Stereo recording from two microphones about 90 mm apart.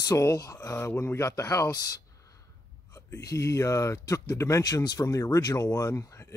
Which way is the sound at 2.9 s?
35° left (ahead or behind).